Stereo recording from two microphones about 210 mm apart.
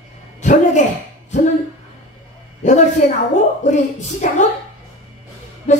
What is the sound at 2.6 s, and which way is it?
Speech, 35° left (ahead or behind).